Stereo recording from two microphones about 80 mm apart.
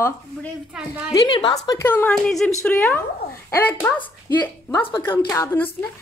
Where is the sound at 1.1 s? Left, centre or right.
Left.